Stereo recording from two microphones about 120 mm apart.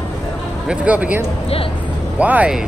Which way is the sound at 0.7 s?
10° right (ahead or behind).